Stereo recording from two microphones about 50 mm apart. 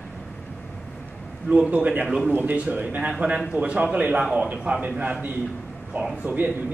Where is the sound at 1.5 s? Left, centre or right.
Right.